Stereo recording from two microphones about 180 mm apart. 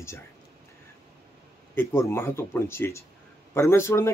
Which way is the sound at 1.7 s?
15° left (ahead or behind).